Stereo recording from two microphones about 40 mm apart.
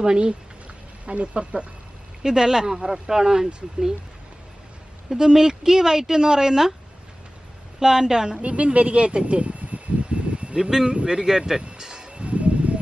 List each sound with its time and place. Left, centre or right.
0.0 s speech: right
2.2 s speech: centre
5.1 s speech: centre
7.8 s speech: centre
8.4 s speech: right
10.5 s speech: centre
11.6 s music: right
12.3 s a sound: right